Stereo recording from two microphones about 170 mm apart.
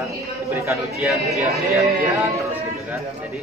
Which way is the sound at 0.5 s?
15° right (ahead or behind).